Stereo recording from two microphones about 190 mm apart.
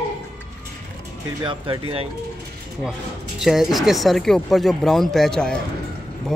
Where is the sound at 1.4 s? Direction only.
25° right (ahead or behind).